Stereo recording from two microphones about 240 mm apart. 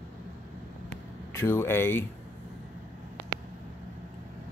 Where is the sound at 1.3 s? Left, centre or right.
Centre.